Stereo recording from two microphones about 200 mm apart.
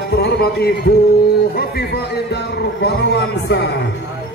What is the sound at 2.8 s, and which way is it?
Speech, 60° left (ahead or behind).